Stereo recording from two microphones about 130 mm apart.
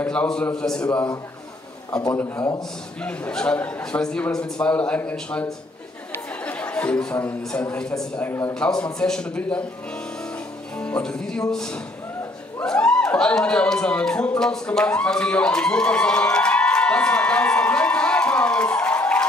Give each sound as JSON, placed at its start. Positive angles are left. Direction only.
{"t": 0.0, "sound": "a man's voice", "side_deg": 10}
{"t": 1.9, "sound": "a man's voice", "side_deg": 30}
{"t": 3.0, "sound": "a man's voice", "side_deg": 10}
{"t": 6.1, "sound": "chatter", "side_deg": 10}
{"t": 7.7, "sound": "a man's voice", "side_deg": 5}
{"t": 8.2, "sound": "a man's voice", "side_deg": 15}
{"t": 8.5, "sound": "a man's voice", "side_deg": 5}
{"t": 10.8, "sound": "a man's voice", "side_deg": 5}